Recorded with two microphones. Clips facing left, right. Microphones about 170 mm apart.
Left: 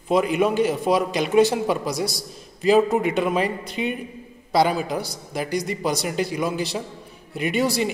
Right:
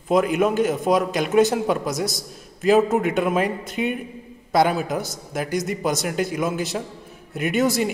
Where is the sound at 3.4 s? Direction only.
50° right (ahead or behind).